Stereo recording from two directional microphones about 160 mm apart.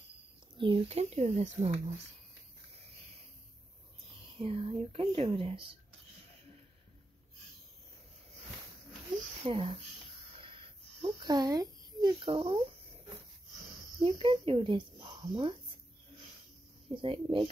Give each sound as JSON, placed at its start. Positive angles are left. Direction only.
{"t": 0.6, "sound": "speech", "side_deg": -30}
{"t": 4.4, "sound": "speech", "side_deg": -35}
{"t": 9.4, "sound": "speech", "side_deg": -35}
{"t": 10.3, "sound": "a sound", "side_deg": -35}
{"t": 14.0, "sound": "speech", "side_deg": -35}
{"t": 16.9, "sound": "speech", "side_deg": -35}